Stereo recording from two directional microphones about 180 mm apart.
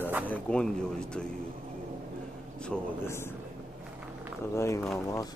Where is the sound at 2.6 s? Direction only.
10° left (ahead or behind).